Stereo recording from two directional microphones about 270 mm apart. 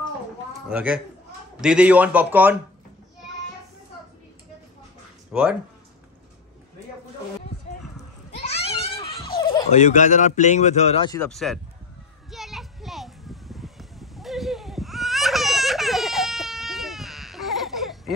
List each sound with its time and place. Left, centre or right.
0.5 s a man's voice: centre
5.3 s a man's voice: centre
8.4 s a sound: left
9.7 s speech: left
11.2 s a man's voice: centre
12.3 s a sound: centre